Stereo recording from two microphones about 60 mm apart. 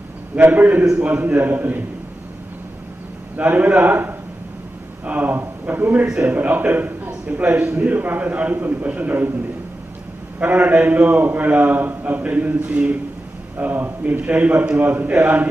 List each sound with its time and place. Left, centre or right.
0.4 s a man's voice: right
3.3 s a man's voice: right
10.4 s a man's voice: right